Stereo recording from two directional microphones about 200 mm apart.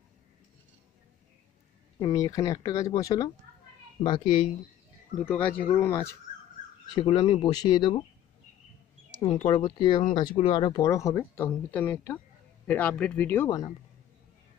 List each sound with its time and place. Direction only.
2.0 s speech: 20° left (ahead or behind)
5.2 s speech: 10° left (ahead or behind)
9.2 s speech: 30° left (ahead or behind)